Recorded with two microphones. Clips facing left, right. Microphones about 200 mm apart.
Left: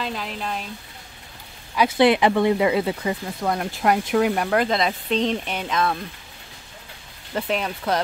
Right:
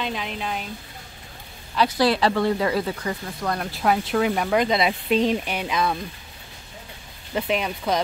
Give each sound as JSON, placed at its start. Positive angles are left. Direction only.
{"t": 0.0, "sound": "speech", "side_deg": 0}
{"t": 1.8, "sound": "speech", "side_deg": 20}
{"t": 4.1, "sound": "speech", "side_deg": 5}
{"t": 7.3, "sound": "speech", "side_deg": -5}